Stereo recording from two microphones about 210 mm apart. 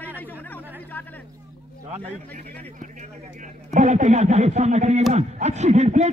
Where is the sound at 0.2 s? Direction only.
10° left (ahead or behind).